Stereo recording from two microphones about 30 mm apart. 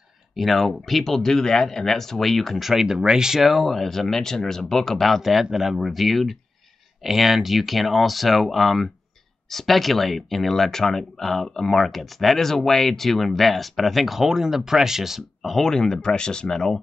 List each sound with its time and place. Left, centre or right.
0.4 s speech: centre
2.6 s speech: centre
3.3 s speech: centre
3.6 s speech: centre
5.2 s speech: centre
15.4 s speech: centre
16.0 s speech: left
16.4 s speech: centre